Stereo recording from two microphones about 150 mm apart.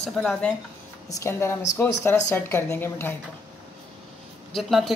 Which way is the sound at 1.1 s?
20° left (ahead or behind).